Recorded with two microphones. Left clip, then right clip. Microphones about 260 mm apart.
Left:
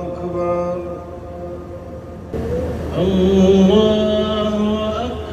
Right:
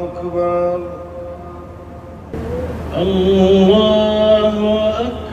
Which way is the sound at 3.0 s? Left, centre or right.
Left.